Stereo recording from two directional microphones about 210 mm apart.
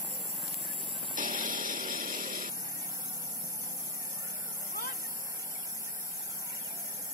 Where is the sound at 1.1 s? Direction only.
40° right (ahead or behind).